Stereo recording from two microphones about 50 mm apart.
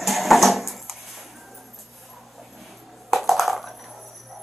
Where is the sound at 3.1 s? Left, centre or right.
Centre.